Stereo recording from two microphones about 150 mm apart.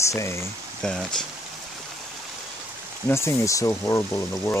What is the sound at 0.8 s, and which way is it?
Speech, 5° left (ahead or behind).